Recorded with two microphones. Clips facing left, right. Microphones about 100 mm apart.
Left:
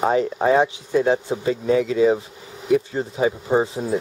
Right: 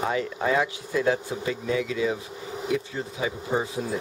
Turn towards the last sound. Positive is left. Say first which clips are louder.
# left 7 dB
turn(degrees=35)  # may be behind; listen again after turning